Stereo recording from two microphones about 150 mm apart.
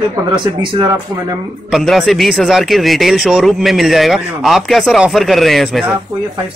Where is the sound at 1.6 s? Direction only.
Centre (ahead or behind).